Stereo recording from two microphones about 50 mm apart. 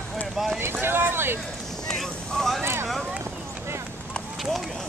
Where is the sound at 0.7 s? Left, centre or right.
Right.